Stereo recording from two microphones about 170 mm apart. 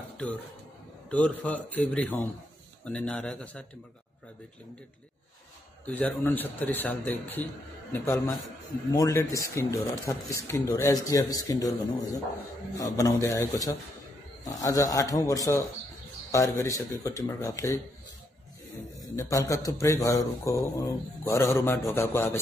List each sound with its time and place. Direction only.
1.1 s a man's voice: 10° left (ahead or behind)
5.9 s a man's voice: 10° left (ahead or behind)
8.9 s speech: 20° left (ahead or behind)
19.1 s a man's voice: 20° left (ahead or behind)